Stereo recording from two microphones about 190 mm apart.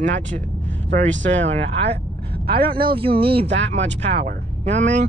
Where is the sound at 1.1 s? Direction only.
75° right (ahead or behind).